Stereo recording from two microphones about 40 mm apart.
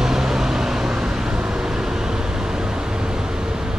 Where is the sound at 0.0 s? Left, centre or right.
Centre.